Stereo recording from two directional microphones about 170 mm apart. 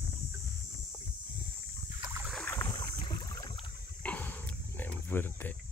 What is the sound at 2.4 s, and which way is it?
Boat, 15° left (ahead or behind).